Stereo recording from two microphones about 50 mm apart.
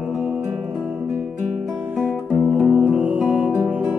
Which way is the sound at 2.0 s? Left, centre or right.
Right.